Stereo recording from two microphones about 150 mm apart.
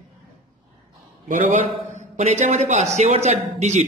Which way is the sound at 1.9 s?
50° right (ahead or behind).